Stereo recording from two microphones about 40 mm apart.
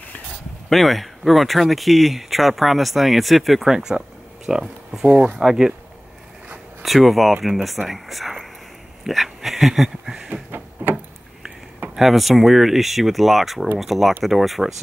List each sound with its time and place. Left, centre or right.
0.7 s speech: centre
3.7 s speech: centre
5.0 s speech: right
5.4 s speech: centre
6.8 s speech: centre
9.0 s a sound: centre
10.3 s a sound: right
11.9 s speech: centre